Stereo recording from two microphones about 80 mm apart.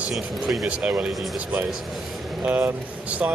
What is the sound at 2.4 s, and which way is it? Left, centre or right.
Speech, right.